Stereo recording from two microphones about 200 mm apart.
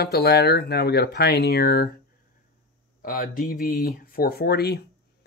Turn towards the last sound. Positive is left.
turn(degrees=55)  # may be behind; listen again after turning